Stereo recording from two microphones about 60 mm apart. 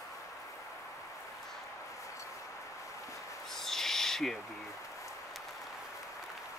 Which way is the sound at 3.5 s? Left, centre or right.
Centre.